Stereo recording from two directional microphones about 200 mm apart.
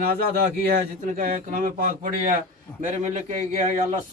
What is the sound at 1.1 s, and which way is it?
Speech, 40° right (ahead or behind).